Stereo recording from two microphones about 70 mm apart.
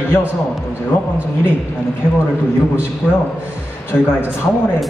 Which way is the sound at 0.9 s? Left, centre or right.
Left.